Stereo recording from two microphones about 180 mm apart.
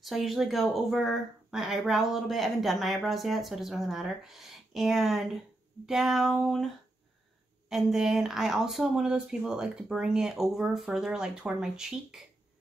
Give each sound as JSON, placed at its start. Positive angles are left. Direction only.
{"t": 0.0, "sound": "speech", "side_deg": 0}
{"t": 7.7, "sound": "speech", "side_deg": 0}